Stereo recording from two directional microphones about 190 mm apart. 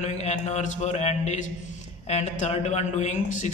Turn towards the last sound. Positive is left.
turn(degrees=40)  # may be behind; listen again after turning